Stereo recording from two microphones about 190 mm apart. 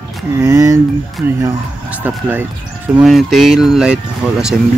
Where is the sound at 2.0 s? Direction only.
5° right (ahead or behind).